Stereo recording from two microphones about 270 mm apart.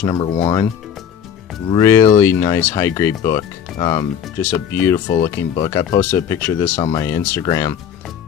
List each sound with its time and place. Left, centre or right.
0.0 s speech: centre
1.7 s speech: centre
5.0 s speech: left
5.7 s speech: centre